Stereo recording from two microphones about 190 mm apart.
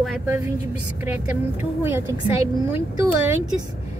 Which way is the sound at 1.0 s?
10° right (ahead or behind).